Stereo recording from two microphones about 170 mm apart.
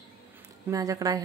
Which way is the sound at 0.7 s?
20° right (ahead or behind).